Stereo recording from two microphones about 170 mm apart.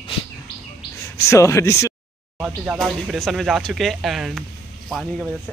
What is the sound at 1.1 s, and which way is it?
Speech, 15° left (ahead or behind).